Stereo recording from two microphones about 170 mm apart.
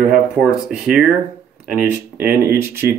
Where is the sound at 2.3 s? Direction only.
65° right (ahead or behind).